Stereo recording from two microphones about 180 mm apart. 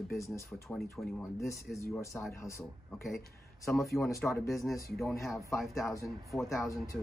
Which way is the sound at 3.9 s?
15° left (ahead or behind).